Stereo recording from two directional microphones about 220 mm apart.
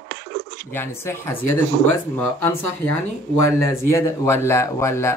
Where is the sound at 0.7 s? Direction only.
10° left (ahead or behind).